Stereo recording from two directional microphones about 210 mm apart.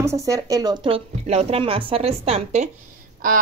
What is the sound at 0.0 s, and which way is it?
Speech, 15° right (ahead or behind).